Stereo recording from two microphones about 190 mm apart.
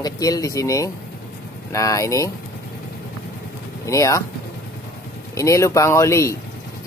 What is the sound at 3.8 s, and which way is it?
Speech, 15° left (ahead or behind).